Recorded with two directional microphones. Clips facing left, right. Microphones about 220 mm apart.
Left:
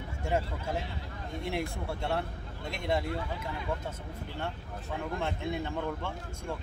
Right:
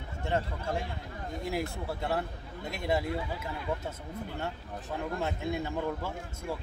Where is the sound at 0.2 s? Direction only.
10° left (ahead or behind).